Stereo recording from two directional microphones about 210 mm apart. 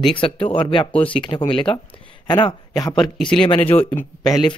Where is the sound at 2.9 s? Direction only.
5° left (ahead or behind).